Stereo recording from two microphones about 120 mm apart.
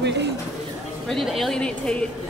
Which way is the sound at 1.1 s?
Centre (ahead or behind).